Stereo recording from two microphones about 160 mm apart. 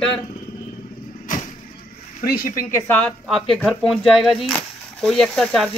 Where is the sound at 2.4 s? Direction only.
20° left (ahead or behind).